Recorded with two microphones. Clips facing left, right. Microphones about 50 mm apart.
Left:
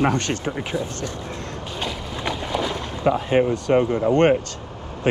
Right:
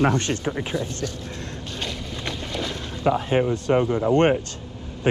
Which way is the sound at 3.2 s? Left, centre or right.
Left.